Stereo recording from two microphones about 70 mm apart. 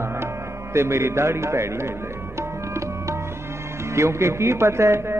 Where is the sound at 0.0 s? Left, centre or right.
Right.